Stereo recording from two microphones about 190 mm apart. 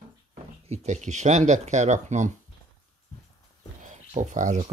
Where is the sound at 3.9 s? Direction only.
40° right (ahead or behind).